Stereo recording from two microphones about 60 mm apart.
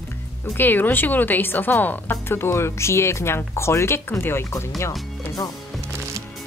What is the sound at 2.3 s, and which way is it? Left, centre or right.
Speech, left.